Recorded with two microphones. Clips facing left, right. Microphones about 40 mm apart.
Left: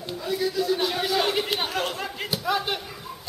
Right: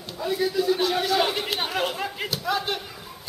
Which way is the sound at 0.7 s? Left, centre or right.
Centre.